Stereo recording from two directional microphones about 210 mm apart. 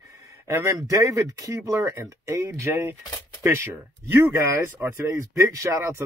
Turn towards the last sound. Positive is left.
turn(degrees=-15)  # may be behind; listen again after turning